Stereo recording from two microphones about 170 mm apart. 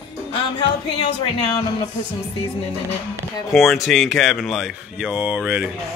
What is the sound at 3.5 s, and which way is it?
Speech, centre (ahead or behind).